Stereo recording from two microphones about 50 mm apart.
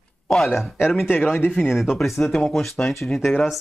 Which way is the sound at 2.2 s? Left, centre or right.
Centre.